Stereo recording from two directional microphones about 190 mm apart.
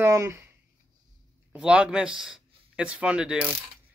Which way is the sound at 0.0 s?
15° right (ahead or behind).